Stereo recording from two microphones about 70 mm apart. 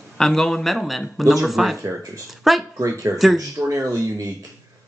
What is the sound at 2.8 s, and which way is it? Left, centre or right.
Speech, right.